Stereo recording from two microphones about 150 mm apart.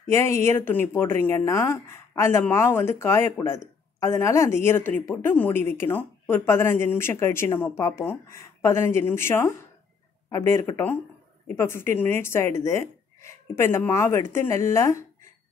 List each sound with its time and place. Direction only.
0.1 s speech: 15° left (ahead or behind)